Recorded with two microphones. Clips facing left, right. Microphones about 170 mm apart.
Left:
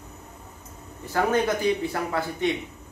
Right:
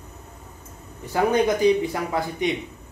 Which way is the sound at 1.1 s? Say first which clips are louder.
Right 3 dB; 15° right (ahead or behind).